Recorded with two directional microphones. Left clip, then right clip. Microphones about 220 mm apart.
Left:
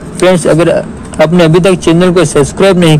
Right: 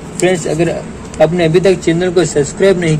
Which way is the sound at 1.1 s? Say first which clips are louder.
Left 4 dB; 40° left (ahead or behind).